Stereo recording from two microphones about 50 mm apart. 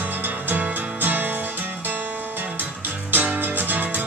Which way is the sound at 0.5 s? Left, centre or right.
Right.